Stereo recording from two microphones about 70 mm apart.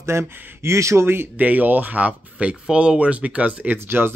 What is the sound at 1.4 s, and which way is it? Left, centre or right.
Speech, right.